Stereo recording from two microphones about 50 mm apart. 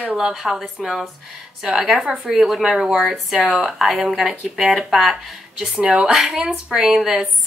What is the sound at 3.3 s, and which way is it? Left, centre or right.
Speech, centre.